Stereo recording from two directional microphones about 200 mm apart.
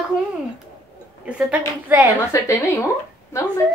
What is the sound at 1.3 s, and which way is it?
Speech, 5° right (ahead or behind).